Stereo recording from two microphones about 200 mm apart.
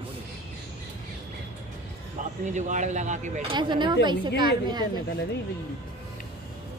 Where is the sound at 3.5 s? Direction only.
25° right (ahead or behind).